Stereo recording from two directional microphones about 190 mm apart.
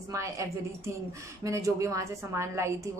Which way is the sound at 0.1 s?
15° right (ahead or behind).